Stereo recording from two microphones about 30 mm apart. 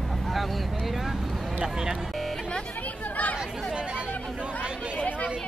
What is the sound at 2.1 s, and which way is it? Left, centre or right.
Music, centre.